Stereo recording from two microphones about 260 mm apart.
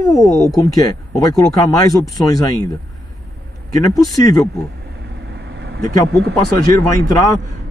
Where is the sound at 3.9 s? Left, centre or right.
Centre.